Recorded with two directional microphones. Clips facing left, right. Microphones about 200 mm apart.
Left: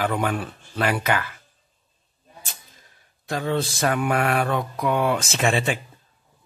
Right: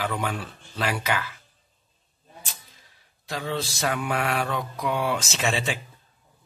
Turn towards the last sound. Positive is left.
turn(degrees=55)  # may be behind; listen again after turning